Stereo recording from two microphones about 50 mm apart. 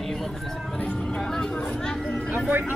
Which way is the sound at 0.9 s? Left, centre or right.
Centre.